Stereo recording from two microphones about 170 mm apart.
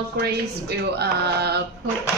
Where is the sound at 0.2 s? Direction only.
70° right (ahead or behind).